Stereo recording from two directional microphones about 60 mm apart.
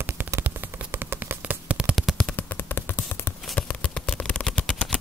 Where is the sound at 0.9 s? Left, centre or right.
Right.